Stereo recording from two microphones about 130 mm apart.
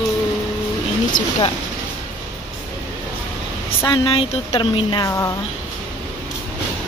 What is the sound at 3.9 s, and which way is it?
Speech, 40° left (ahead or behind).